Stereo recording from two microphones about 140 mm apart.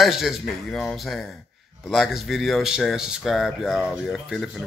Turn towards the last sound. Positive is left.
turn(degrees=0)  # may be behind; listen again after turning